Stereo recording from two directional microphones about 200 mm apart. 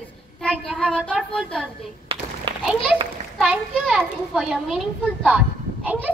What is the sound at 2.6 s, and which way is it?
A child's voice, centre (ahead or behind).